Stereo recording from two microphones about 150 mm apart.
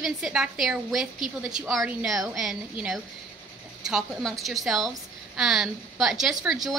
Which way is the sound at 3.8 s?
Centre (ahead or behind).